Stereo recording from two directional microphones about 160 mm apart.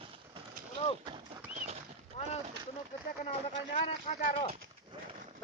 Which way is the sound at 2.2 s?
40° left (ahead or behind).